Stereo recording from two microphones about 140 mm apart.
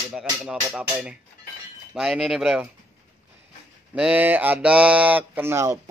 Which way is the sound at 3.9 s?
10° right (ahead or behind).